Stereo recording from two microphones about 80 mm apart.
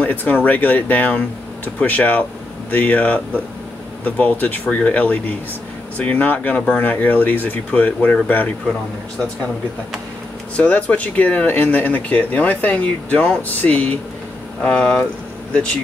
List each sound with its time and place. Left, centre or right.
0.0 s speech: left
10.5 s speech: centre